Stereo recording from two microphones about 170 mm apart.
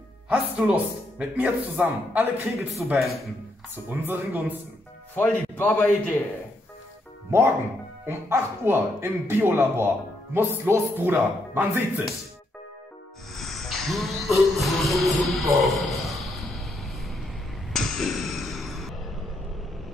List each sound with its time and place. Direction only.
0.3 s a man's voice: 10° right (ahead or behind)
2.7 s a man's voice: centre (ahead or behind)
3.9 s a man's voice: 10° right (ahead or behind)
5.1 s a man's voice: 10° left (ahead or behind)
7.2 s a man's voice: 15° right (ahead or behind)
13.4 s music: centre (ahead or behind)
17.7 s a sound: centre (ahead or behind)